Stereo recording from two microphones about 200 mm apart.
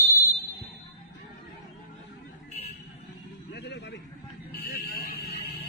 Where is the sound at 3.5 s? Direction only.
55° left (ahead or behind).